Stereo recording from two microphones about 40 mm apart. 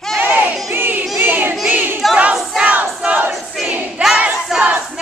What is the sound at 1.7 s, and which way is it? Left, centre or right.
Battle cry, right.